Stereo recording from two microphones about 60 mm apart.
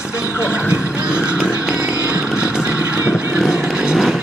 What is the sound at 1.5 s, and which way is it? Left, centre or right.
Chainsaw, right.